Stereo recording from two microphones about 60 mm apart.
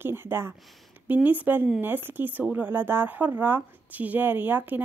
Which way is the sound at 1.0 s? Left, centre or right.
Right.